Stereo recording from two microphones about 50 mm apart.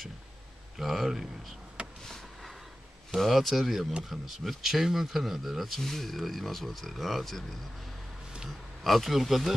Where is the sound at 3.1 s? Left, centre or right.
Centre.